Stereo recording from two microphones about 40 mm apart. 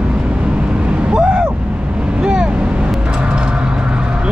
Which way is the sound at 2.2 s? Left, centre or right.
Right.